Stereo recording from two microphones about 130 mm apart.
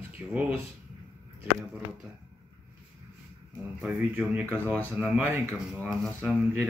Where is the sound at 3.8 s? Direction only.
10° right (ahead or behind).